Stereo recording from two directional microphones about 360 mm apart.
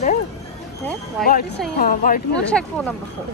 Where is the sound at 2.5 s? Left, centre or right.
Centre.